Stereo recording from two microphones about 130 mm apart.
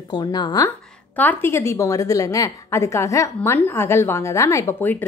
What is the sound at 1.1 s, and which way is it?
A woman's voice, 15° left (ahead or behind).